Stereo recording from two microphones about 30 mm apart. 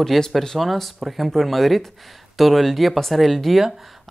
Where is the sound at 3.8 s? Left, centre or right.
Centre.